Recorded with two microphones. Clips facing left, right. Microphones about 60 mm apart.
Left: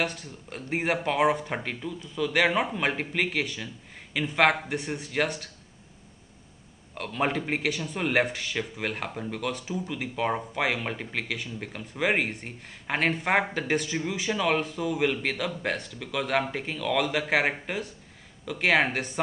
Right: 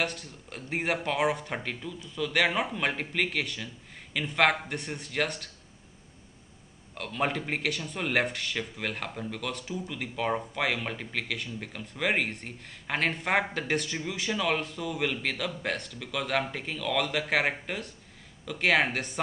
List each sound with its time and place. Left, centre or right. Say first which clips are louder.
0.0 s speech: left 2 dB; centre
7.0 s speech: left 2 dB; centre